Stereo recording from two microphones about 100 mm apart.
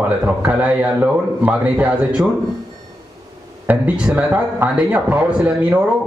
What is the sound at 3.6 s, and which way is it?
A man's voice, 15° right (ahead or behind).